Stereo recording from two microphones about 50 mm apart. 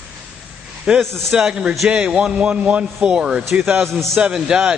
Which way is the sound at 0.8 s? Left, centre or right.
Centre.